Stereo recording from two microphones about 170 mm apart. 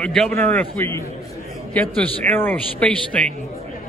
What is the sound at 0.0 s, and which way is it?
A man's voice, 5° left (ahead or behind).